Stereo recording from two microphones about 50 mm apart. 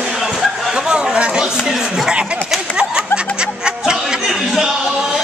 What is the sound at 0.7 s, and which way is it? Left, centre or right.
Chatter, centre.